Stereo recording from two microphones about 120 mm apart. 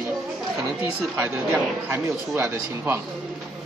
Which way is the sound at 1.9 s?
20° right (ahead or behind).